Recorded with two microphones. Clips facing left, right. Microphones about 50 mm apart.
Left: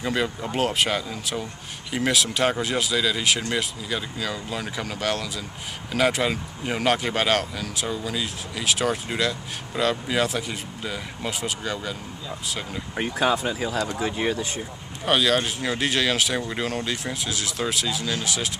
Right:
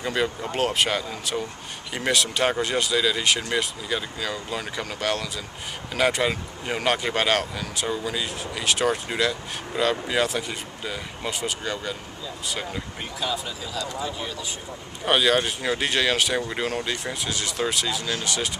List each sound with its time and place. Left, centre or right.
0.0 s speech: centre
12.9 s speech: left
14.0 s speech: left
15.0 s speech: centre